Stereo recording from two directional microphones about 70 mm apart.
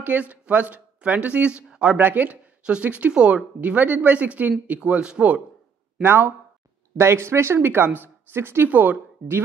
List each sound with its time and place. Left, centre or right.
0.0 s speech: right
6.0 s speech: right